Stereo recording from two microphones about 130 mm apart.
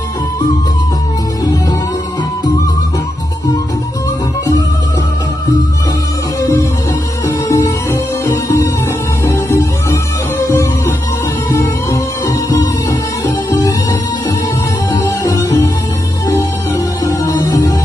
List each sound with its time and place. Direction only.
1.4 s music: 30° left (ahead or behind)
7.4 s music: 25° left (ahead or behind)
17.4 s music: 25° left (ahead or behind)